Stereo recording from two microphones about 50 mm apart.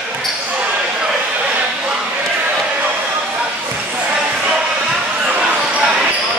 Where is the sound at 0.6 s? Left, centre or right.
Centre.